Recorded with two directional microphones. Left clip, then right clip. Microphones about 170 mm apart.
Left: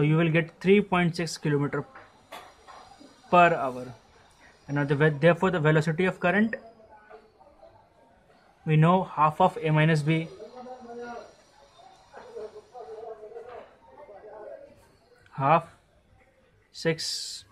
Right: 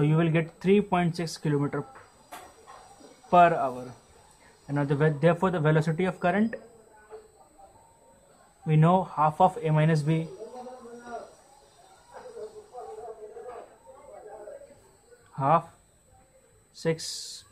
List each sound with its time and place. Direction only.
0.0 s speech: 10° left (ahead or behind)
3.3 s speech: 15° left (ahead or behind)
8.6 s speech: 15° left (ahead or behind)
15.3 s speech: 20° left (ahead or behind)
16.7 s speech: 15° left (ahead or behind)